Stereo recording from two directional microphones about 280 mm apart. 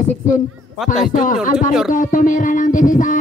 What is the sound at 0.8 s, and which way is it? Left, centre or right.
Speech, centre.